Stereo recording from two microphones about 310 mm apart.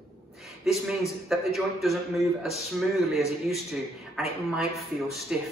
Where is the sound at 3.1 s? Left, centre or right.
Centre.